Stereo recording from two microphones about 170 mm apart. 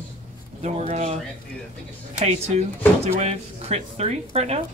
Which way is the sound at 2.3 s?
40° right (ahead or behind).